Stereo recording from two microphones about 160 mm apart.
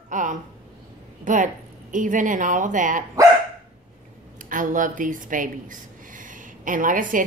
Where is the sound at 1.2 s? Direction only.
50° right (ahead or behind).